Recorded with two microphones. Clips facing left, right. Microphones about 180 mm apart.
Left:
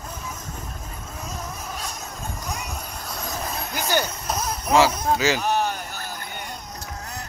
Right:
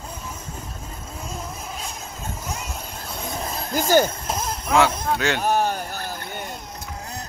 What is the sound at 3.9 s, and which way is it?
Speech, 50° right (ahead or behind).